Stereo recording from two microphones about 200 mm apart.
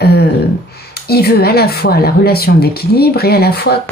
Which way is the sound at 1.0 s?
50° left (ahead or behind).